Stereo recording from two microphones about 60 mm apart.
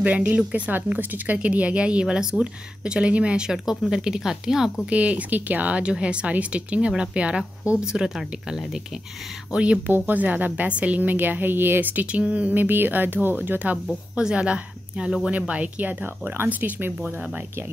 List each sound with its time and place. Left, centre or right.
0.0 s a woman's voice: right; by 4.7 s centre
4.8 s a woman's voice: right; by 8.8 s centre
9.5 s a woman's voice: centre
9.8 s a woman's voice: right
14.1 s a woman's voice: centre